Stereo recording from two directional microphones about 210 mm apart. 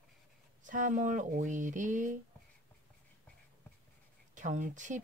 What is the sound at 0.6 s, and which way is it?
Speech, 40° right (ahead or behind).